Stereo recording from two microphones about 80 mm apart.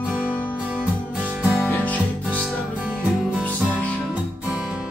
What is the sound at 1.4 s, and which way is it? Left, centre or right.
Music, centre.